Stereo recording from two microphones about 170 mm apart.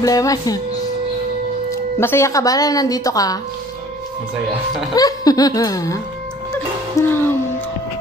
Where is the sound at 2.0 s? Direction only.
15° left (ahead or behind).